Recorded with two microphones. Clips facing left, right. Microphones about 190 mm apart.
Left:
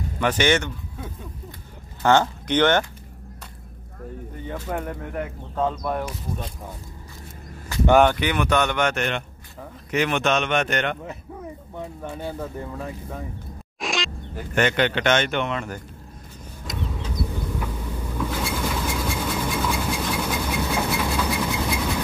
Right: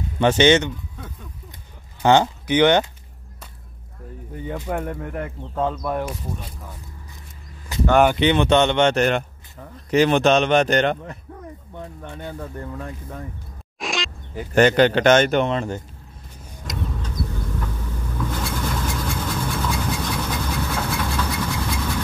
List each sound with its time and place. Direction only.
0.2 s speech: 25° right (ahead or behind)
2.0 s speech: 20° right (ahead or behind)
4.5 s speech: 10° right (ahead or behind)
8.2 s speech: 25° right (ahead or behind)
11.8 s speech: 5° left (ahead or behind)
13.7 s a sound: centre (ahead or behind)
14.5 s speech: 35° right (ahead or behind)
16.6 s vehicle: 5° left (ahead or behind)